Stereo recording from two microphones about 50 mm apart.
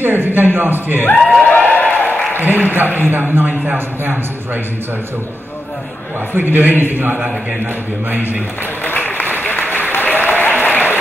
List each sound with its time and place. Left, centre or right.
0.0 s a man's voice: right
1.4 s a sound: left
2.3 s a man's voice: right
6.3 s a man's voice: right
8.8 s applause: left